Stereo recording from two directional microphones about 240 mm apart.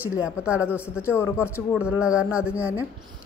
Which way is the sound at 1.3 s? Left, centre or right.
Centre.